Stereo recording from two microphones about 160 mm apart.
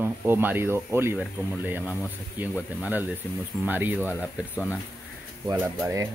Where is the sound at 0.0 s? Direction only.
15° right (ahead or behind).